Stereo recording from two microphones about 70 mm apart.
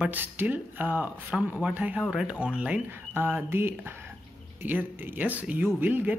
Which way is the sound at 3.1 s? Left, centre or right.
Right.